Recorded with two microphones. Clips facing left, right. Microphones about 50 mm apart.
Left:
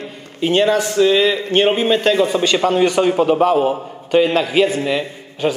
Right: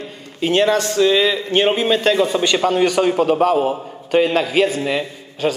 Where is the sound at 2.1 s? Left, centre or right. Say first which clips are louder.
Left 1 dB; left.